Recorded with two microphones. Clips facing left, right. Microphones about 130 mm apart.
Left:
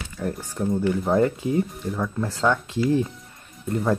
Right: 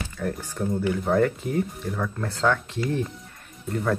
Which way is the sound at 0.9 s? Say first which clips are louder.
Left 1 dB; 20° left (ahead or behind).